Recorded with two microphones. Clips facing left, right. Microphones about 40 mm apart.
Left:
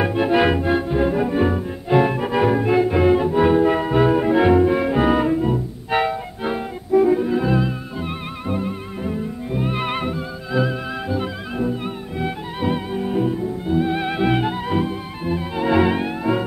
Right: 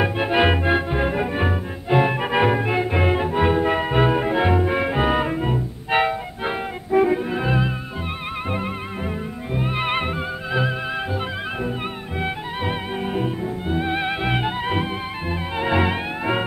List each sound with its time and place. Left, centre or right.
0.0 s music: centre
0.6 s music: right
1.9 s music: centre
2.1 s music: right
2.6 s music: right
4.4 s music: centre
4.6 s music: right
8.5 s music: right
9.0 s music: right
9.9 s music: right
10.6 s music: right
14.7 s music: right; by 16.1 s centre